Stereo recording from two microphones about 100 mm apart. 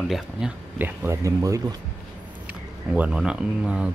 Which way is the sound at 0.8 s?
20° right (ahead or behind).